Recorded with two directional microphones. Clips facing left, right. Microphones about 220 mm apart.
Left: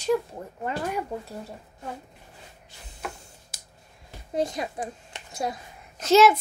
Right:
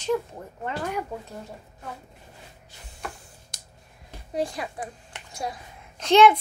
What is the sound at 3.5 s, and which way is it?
Finger snapping, 5° left (ahead or behind).